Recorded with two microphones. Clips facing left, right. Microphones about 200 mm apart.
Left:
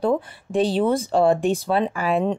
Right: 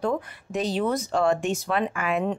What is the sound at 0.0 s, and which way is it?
Speech, 30° left (ahead or behind).